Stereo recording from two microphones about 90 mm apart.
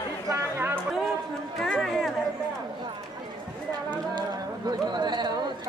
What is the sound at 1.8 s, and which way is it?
Chatter, centre (ahead or behind).